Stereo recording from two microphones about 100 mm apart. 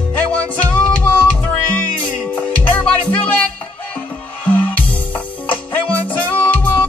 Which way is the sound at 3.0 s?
15° left (ahead or behind).